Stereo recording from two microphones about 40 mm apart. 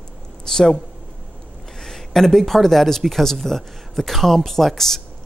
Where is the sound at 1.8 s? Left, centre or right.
Centre.